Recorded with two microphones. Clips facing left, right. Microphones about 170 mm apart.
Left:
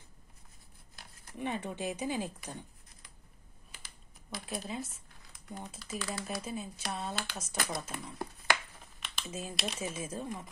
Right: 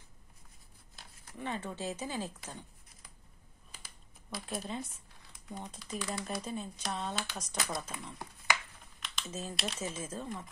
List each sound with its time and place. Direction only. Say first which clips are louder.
1.4 s speech: left 2 dB; 15° left (ahead or behind)
4.3 s speech: even; 5° right (ahead or behind)